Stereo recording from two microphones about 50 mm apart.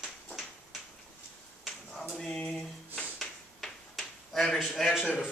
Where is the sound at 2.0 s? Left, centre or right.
Centre.